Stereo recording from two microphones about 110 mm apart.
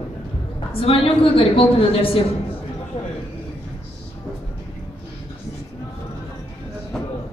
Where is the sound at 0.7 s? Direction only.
60° left (ahead or behind).